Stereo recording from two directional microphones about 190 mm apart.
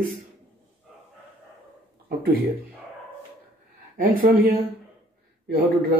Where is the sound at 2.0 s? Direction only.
50° right (ahead or behind).